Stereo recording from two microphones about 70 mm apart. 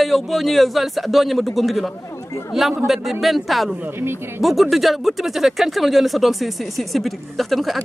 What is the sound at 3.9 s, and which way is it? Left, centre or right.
Speech, right.